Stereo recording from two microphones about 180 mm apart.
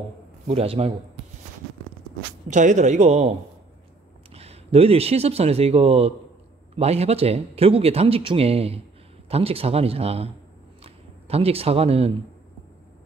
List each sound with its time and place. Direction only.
0.5 s speech: 35° right (ahead or behind)
2.4 s speech: 45° right (ahead or behind)
10.8 s a sound: 35° right (ahead or behind)